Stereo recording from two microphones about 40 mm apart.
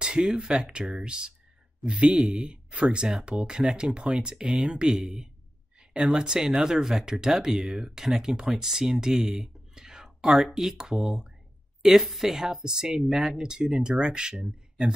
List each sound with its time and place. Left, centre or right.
0.0 s speech: right
1.8 s speech: centre
2.1 s speech: right